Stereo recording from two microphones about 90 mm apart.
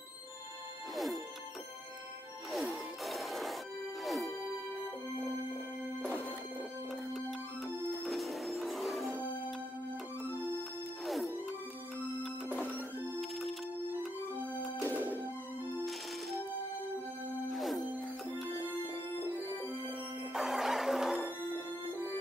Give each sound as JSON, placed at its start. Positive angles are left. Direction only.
{"t": 0.9, "sound": "music", "side_deg": 0}
{"t": 2.5, "sound": "music", "side_deg": 0}
{"t": 7.2, "sound": "music", "side_deg": 0}
{"t": 11.1, "sound": "music", "side_deg": 0}
{"t": 13.2, "sound": "music", "side_deg": 0}
{"t": 14.8, "sound": "music", "side_deg": 20}
{"t": 15.0, "sound": "music", "side_deg": -20}
{"t": 15.8, "sound": "music", "side_deg": 0}
{"t": 17.5, "sound": "music", "side_deg": 0}
{"t": 20.3, "sound": "music", "side_deg": -5}